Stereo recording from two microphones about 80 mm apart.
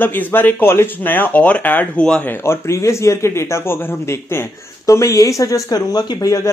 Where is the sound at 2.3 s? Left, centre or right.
Left.